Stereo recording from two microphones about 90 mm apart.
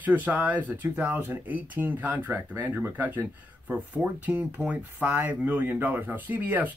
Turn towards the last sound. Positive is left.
turn(degrees=-20)  # may be behind; listen again after turning